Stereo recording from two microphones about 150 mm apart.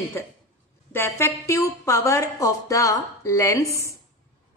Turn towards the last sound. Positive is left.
turn(degrees=20)  # may be behind; listen again after turning